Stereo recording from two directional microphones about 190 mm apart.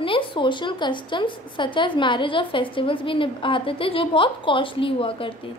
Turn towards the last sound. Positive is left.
turn(degrees=30)  # may be behind; listen again after turning